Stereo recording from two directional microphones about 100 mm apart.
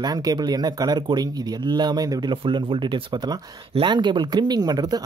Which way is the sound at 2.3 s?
55° right (ahead or behind).